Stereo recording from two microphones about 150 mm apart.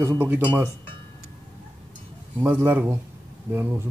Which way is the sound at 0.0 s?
15° right (ahead or behind).